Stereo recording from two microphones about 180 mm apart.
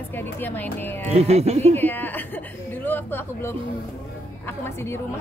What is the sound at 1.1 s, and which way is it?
Speech, 35° right (ahead or behind).